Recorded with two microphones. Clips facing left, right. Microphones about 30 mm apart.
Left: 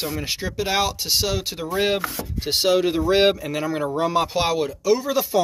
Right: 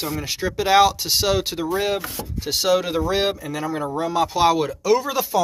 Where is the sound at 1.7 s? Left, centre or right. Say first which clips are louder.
Left 3 dB; left.